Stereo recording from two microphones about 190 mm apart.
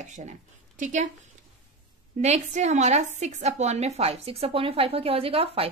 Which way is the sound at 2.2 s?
35° right (ahead or behind).